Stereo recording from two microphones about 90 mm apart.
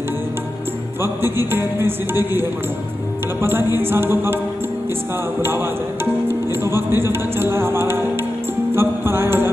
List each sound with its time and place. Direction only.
1.0 s speech: 25° right (ahead or behind)
6.2 s speech: 25° right (ahead or behind)
8.7 s music: 25° right (ahead or behind)